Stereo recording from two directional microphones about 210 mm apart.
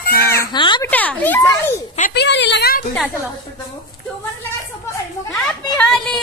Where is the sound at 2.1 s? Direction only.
55° left (ahead or behind).